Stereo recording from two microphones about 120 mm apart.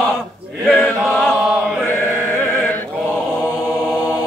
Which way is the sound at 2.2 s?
15° left (ahead or behind).